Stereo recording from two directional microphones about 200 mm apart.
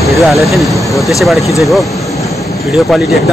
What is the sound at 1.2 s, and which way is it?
Speech, centre (ahead or behind).